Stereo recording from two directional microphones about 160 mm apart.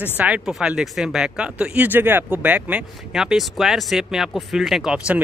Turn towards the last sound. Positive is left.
turn(degrees=-5)  # may be behind; listen again after turning